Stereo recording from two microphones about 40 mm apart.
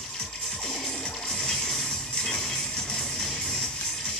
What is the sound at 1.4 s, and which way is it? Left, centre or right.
Music, centre.